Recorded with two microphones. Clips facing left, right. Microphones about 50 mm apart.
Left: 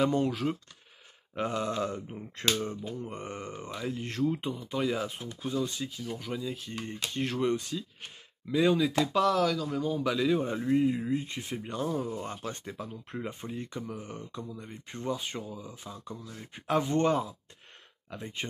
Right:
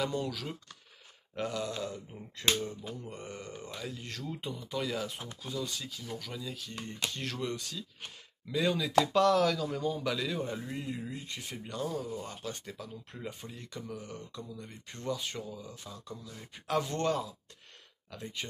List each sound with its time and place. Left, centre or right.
0.0 s a sound: left
3.0 s speech: left
8.5 s speech: centre